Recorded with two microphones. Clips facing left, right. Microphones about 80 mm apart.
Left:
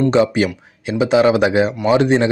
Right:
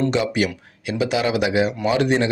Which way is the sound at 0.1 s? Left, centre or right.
Left.